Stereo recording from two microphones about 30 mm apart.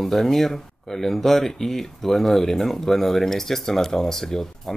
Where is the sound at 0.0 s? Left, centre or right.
Centre.